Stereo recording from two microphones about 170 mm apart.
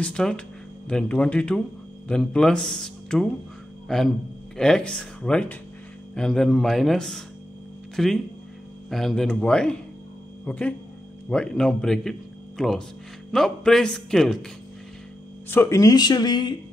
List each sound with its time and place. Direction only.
0.0 s speech: 5° left (ahead or behind)
15.5 s speech: 15° left (ahead or behind)